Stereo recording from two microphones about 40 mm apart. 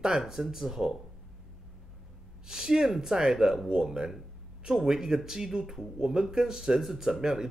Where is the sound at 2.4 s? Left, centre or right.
Centre.